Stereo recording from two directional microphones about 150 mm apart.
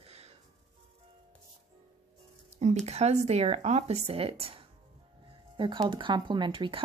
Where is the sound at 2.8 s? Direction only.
45° right (ahead or behind).